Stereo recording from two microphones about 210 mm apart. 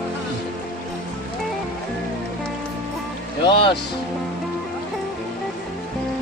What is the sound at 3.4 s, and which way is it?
Music, 25° left (ahead or behind).